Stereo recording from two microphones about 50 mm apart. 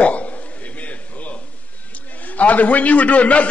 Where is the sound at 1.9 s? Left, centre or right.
Left.